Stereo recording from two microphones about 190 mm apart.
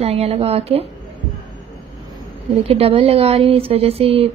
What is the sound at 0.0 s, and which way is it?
Speech, 30° right (ahead or behind).